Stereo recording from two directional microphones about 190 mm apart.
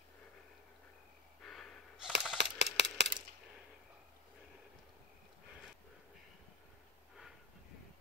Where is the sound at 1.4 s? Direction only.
Centre (ahead or behind).